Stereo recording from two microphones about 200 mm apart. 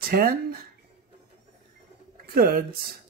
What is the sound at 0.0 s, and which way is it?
Speech, 45° right (ahead or behind).